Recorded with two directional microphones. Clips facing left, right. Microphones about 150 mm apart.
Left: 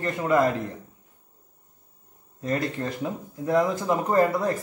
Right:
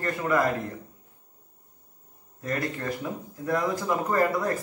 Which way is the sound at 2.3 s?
25° left (ahead or behind).